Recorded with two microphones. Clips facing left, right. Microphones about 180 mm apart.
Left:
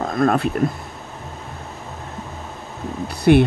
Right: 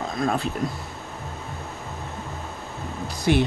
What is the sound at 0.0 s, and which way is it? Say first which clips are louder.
Speech: left 7 dB; 55° left (ahead or behind).